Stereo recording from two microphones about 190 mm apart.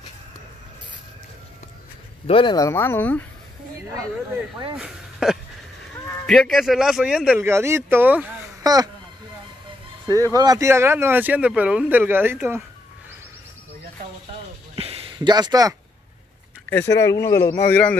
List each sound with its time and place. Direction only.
2.2 s speech: 25° left (ahead or behind); by 3.3 s 10° left (ahead or behind)
4.7 s a sound: 5° right (ahead or behind)
6.2 s speech: centre (ahead or behind)
8.6 s speech: 20° right (ahead or behind)
10.0 s speech: 20° right (ahead or behind)
15.1 s speech: 20° right (ahead or behind)
16.6 s speech: 10° left (ahead or behind)